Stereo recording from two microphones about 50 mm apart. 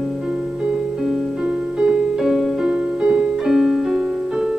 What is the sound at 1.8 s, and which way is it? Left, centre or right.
Music, centre.